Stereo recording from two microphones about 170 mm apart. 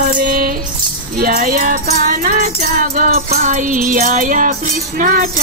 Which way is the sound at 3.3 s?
40° right (ahead or behind).